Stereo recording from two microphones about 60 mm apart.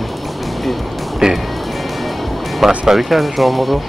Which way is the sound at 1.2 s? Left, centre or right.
Centre.